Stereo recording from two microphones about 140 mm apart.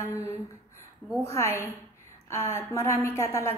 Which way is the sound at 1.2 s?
20° left (ahead or behind).